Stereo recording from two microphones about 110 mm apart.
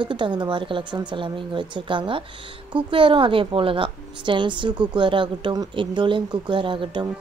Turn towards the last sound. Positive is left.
turn(degrees=-45)  # may be behind; listen again after turning